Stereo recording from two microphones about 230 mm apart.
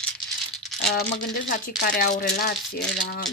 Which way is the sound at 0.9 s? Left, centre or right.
Left.